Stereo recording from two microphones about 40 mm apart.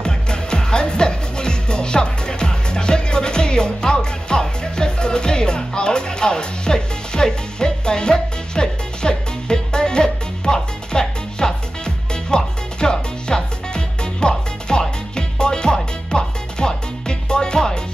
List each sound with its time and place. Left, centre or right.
0.0 s music: left